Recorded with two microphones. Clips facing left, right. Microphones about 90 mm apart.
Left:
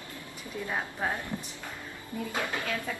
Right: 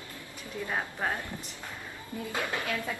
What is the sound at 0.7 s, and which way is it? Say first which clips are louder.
Speech: even; 5° right (ahead or behind).